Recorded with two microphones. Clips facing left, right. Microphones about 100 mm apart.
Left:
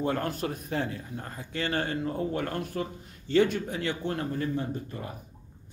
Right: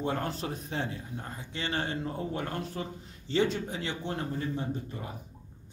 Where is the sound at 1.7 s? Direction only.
45° left (ahead or behind).